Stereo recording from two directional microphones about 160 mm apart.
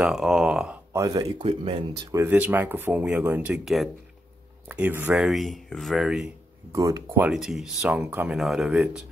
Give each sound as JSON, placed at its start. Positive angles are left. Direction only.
{"t": 0.0, "sound": "speech", "side_deg": 0}
{"t": 0.9, "sound": "speech", "side_deg": -20}
{"t": 1.4, "sound": "speech", "side_deg": -35}
{"t": 2.0, "sound": "speech", "side_deg": -15}
{"t": 5.1, "sound": "speech", "side_deg": 0}
{"t": 6.7, "sound": "speech", "side_deg": -20}
{"t": 7.2, "sound": "speech", "side_deg": 0}